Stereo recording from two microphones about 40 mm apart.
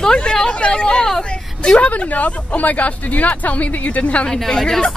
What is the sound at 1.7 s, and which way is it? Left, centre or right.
Speech, left.